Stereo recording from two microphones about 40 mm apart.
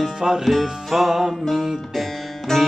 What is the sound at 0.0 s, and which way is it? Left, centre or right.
Music, centre.